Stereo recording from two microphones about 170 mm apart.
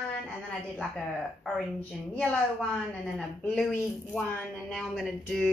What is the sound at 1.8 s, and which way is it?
Speech, 5° left (ahead or behind).